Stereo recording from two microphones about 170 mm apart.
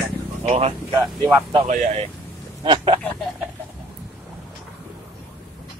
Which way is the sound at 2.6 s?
30° right (ahead or behind).